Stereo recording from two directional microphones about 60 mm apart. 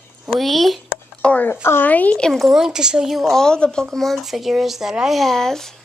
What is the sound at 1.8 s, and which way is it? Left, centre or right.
Speech, left.